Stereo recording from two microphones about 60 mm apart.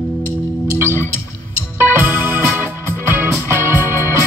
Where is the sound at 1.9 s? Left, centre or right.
Right.